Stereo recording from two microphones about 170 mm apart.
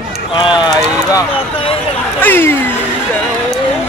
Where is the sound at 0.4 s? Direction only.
25° left (ahead or behind).